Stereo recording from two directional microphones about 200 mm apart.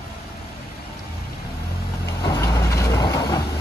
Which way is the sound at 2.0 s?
20° left (ahead or behind).